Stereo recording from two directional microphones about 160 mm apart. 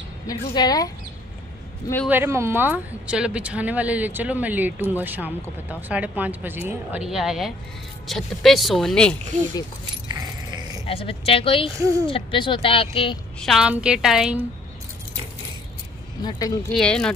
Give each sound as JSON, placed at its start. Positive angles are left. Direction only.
{"t": 0.3, "sound": "a woman's voice", "side_deg": 25}
{"t": 2.0, "sound": "speech", "side_deg": -15}
{"t": 10.1, "sound": "keys jangling", "side_deg": -25}
{"t": 10.9, "sound": "speech", "side_deg": 35}
{"t": 11.8, "sound": "speech", "side_deg": -20}
{"t": 12.1, "sound": "speech", "side_deg": 30}
{"t": 13.4, "sound": "speech", "side_deg": 0}
{"t": 16.3, "sound": "a woman's voice", "side_deg": 20}
{"t": 16.7, "sound": "speech", "side_deg": 5}